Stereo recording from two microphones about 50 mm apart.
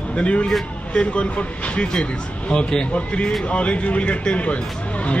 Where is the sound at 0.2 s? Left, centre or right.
Left.